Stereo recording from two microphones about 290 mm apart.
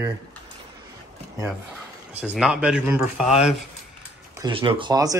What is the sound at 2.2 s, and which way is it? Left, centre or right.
Speech, centre.